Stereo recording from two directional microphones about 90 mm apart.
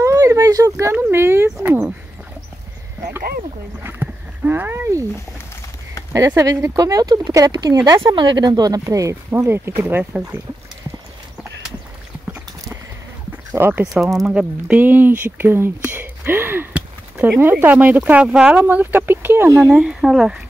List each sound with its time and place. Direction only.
0.0 s a sound: 35° right (ahead or behind)
0.9 s speech: 25° right (ahead or behind)
3.8 s speech: 25° right (ahead or behind)
6.1 s speech: 35° right (ahead or behind)
8.0 s speech: 65° right (ahead or behind); by 9.1 s 40° right (ahead or behind)
9.3 s speech: 25° right (ahead or behind)
13.6 s speech: 25° right (ahead or behind)
14.2 s speech: 10° right (ahead or behind); by 19.7 s 30° right (ahead or behind)
19.7 s speech: 5° right (ahead or behind)